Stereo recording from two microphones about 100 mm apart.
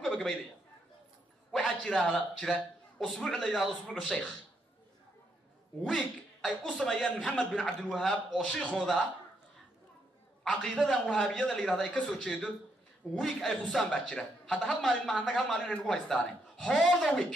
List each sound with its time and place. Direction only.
1.5 s a man's voice: 5° left (ahead or behind)
5.9 s speech: centre (ahead or behind)
10.4 s a man's voice: 5° left (ahead or behind)